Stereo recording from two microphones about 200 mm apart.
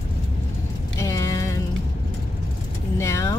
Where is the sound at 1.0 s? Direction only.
15° left (ahead or behind).